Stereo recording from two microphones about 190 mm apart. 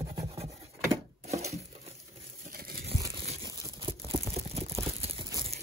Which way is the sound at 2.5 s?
50° right (ahead or behind).